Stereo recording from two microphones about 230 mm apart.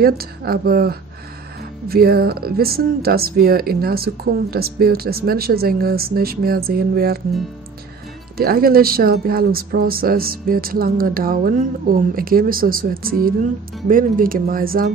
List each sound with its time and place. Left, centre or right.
0.0 s speech: right
8.4 s speech: right